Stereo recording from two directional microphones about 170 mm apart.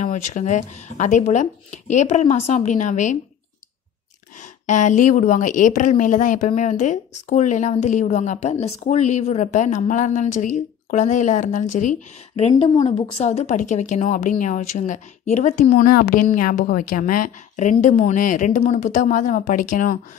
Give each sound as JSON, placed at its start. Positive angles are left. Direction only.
{"t": 0.0, "sound": "a woman's voice", "side_deg": 45}
{"t": 4.4, "sound": "a woman's voice", "side_deg": 45}